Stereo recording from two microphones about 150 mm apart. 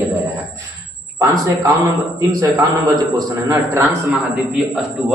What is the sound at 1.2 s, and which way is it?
A man's voice, 20° right (ahead or behind).